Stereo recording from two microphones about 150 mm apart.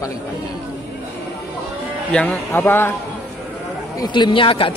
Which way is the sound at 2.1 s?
10° left (ahead or behind).